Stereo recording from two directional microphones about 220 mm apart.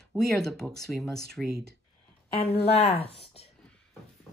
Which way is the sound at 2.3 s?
25° left (ahead or behind).